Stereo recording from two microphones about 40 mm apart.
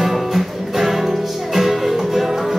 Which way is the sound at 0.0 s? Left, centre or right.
Centre.